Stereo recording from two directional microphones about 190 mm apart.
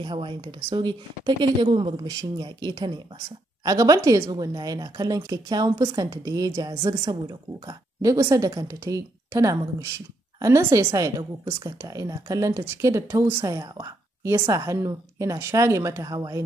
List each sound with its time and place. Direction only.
0.0 s a woman's voice: 25° right (ahead or behind)